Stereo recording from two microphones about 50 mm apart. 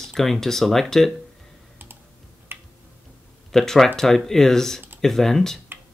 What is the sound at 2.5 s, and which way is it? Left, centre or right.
Tick-tock, right.